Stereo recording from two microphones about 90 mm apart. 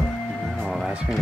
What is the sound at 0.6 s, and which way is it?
Music, centre (ahead or behind).